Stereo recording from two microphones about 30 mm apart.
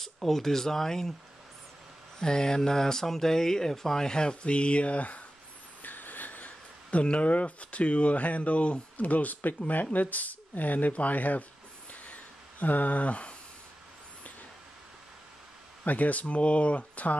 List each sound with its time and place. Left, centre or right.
0.0 s speech: centre
2.1 s speech: left
5.8 s vehicle: left
6.4 s speech: left
8.9 s speech: left
10.9 s speech: left
11.1 s speech: left
11.9 s a sound: left
15.8 s speech: left